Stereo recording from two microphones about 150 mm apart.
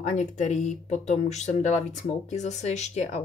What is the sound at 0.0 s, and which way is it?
Speech, 55° left (ahead or behind).